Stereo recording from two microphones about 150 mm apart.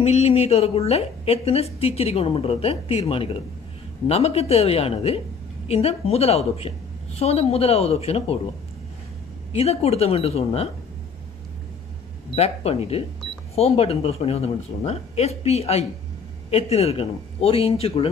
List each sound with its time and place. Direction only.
0.0 s a woman's voice: 45° left (ahead or behind)
9.5 s speech: 40° left (ahead or behind)
12.4 s a woman's voice: 40° left (ahead or behind)